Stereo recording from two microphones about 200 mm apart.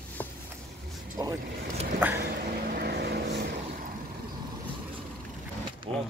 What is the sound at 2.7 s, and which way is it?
Vehicle, 55° right (ahead or behind).